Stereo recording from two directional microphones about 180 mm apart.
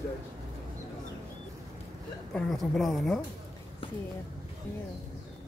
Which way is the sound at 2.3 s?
Centre (ahead or behind).